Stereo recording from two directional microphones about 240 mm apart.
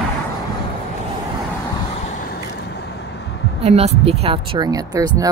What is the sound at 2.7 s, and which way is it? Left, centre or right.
Vehicle, left.